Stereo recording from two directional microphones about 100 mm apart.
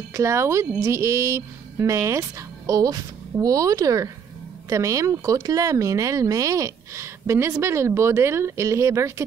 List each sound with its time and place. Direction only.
0.1 s speech: 30° right (ahead or behind)